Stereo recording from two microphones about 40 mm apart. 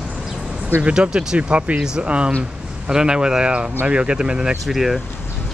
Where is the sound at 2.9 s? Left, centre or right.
Centre.